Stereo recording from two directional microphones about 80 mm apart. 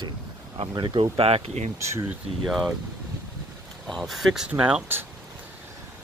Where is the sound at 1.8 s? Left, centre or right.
Right.